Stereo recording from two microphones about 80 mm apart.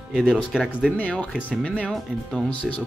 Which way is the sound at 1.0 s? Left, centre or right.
Centre.